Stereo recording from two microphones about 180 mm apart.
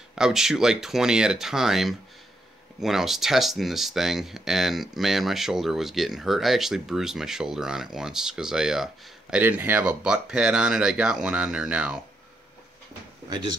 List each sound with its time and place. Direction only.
0.1 s speech: 5° right (ahead or behind)
13.3 s speech: 25° right (ahead or behind)